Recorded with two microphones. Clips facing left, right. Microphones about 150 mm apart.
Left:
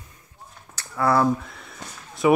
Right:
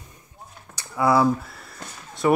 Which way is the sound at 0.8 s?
10° right (ahead or behind).